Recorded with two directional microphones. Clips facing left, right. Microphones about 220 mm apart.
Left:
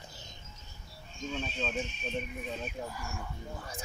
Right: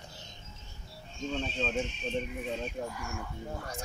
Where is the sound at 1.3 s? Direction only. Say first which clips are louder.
Right 3 dB; 10° left (ahead or behind).